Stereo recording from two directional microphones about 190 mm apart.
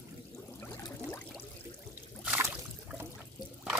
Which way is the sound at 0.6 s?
15° left (ahead or behind).